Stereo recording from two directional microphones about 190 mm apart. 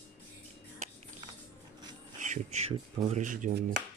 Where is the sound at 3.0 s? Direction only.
40° right (ahead or behind).